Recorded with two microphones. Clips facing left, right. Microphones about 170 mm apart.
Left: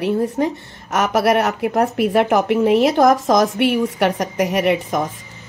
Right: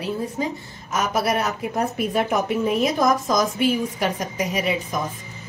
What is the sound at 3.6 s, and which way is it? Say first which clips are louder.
A woman's voice: left 5 dB; 70° left (ahead or behind).